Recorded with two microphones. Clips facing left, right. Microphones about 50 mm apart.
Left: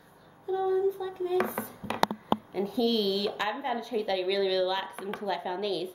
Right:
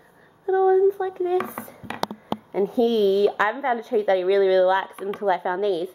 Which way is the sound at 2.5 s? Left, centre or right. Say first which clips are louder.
Right 10 dB; right.